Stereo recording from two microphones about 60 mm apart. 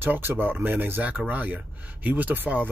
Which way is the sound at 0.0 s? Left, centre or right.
Right.